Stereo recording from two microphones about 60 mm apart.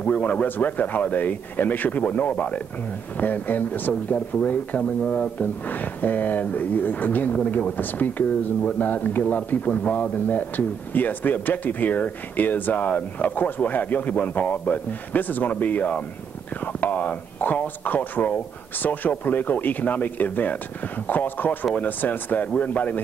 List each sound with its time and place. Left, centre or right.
0.0 s speech: left
5.4 s speech: left